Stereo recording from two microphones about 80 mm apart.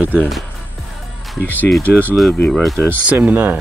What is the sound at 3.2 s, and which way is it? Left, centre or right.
Speech, right.